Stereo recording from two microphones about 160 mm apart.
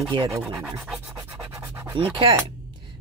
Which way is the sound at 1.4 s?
15° right (ahead or behind).